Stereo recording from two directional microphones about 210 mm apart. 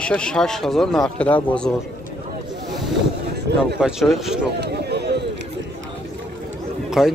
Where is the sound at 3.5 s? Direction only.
50° right (ahead or behind).